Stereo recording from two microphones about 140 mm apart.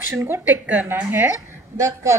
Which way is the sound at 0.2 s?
15° right (ahead or behind).